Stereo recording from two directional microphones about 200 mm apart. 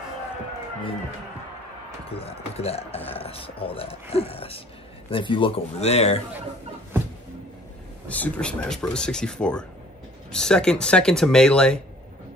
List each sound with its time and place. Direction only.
2.0 s speech: 30° left (ahead or behind)
8.1 s speech: 5° left (ahead or behind)